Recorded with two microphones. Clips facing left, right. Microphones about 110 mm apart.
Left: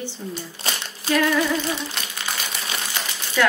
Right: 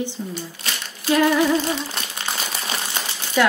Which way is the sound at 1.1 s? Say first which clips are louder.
Right 3 dB; 25° right (ahead or behind).